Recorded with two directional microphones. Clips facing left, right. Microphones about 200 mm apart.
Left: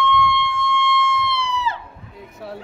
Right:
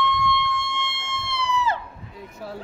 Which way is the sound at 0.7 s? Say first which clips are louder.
Left 11 dB; 50° right (ahead or behind).